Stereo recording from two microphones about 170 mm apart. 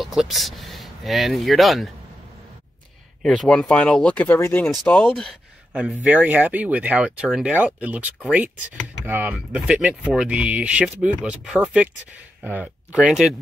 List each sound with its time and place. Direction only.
0.0 s speech: centre (ahead or behind)
3.2 s speech: 5° left (ahead or behind)
4.6 s speech: centre (ahead or behind)